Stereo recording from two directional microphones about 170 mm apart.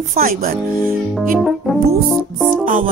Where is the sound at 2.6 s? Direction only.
50° right (ahead or behind).